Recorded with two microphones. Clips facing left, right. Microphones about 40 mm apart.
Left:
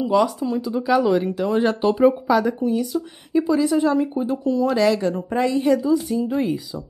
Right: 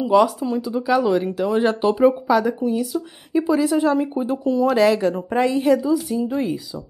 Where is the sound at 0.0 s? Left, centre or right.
Centre.